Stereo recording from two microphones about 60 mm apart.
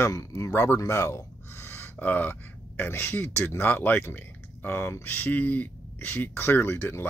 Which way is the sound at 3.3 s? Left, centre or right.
Left.